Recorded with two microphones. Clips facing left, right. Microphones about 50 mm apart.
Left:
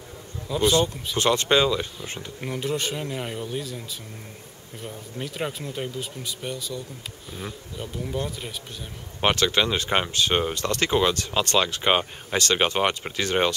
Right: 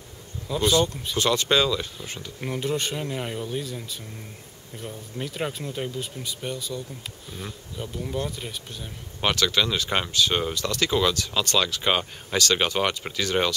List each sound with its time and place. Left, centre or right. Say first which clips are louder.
0.5 s speech: left 1 dB; centre
1.1 s speech: left 2 dB; left
2.4 s speech: even; centre
9.2 s speech: left 2 dB; left
10.5 s speech: left 1 dB; left